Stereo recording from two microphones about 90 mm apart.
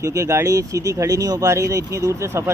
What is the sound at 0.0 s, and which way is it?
Speech, 35° right (ahead or behind).